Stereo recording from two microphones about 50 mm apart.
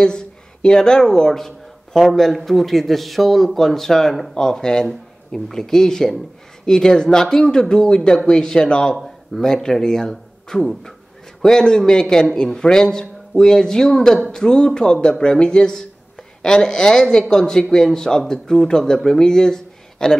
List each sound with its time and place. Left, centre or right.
0.0 s speech: centre
8.9 s speech: centre